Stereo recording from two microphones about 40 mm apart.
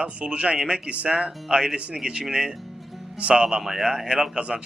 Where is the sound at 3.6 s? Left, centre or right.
Centre; by 4.6 s right.